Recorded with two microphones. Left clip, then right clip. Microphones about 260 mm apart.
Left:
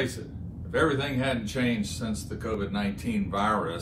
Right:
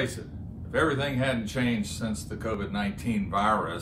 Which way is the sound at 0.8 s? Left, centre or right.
Centre.